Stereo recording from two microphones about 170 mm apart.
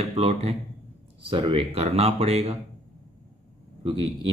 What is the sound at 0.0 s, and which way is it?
Speech, 35° right (ahead or behind).